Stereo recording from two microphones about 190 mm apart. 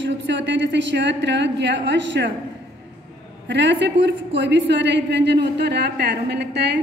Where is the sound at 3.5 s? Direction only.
70° right (ahead or behind).